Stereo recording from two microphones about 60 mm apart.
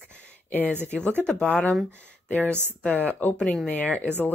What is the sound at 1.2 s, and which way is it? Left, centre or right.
Speech, centre.